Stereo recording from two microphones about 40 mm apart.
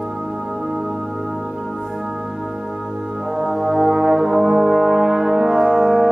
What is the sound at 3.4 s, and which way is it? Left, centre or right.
Brass instrument, centre.